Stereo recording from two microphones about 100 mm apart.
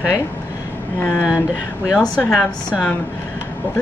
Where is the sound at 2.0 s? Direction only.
10° left (ahead or behind).